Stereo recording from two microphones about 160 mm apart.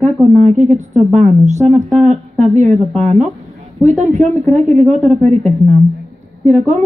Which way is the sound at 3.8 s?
45° right (ahead or behind).